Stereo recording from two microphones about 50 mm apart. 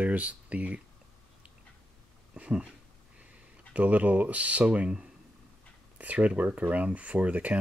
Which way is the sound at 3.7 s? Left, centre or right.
Right.